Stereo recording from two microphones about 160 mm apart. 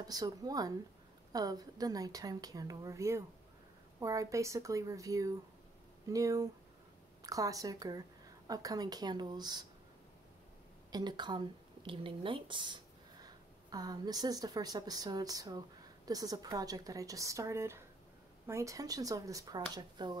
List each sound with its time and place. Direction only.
0.0 s a woman's voice: 25° right (ahead or behind)
10.9 s a woman's voice: 25° right (ahead or behind)